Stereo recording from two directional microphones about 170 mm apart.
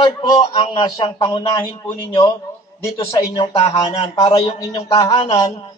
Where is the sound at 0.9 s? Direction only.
20° left (ahead or behind).